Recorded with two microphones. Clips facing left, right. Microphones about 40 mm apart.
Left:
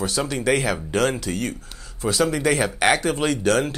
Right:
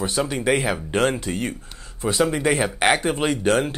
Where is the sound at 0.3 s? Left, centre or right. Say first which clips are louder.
Left 2 dB; centre.